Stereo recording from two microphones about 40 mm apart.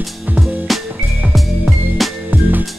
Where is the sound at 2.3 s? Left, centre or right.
Right.